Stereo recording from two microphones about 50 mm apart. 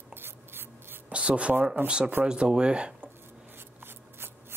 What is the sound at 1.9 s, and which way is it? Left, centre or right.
Speech, centre.